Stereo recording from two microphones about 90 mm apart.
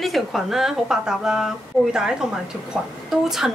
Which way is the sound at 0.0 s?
Centre (ahead or behind).